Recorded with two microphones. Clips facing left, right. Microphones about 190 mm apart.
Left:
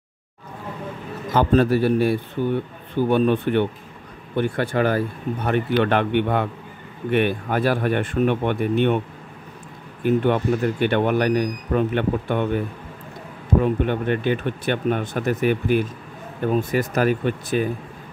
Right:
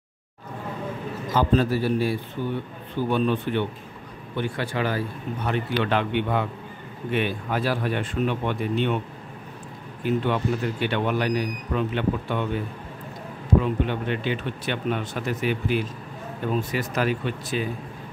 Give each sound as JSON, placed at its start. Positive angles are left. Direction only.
{"t": 1.3, "sound": "speech", "side_deg": 60}
{"t": 10.0, "sound": "speech", "side_deg": 50}